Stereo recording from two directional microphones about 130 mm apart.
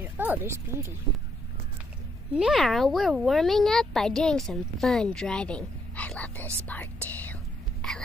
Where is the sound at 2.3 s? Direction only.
5° right (ahead or behind); by 7.3 s 10° left (ahead or behind).